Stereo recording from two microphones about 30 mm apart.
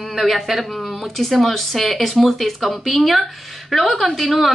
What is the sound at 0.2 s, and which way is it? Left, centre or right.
Speech, centre.